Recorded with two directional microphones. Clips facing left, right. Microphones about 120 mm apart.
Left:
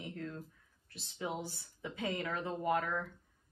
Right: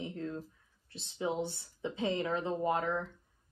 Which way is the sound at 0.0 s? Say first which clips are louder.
Right 4 dB; 20° right (ahead or behind).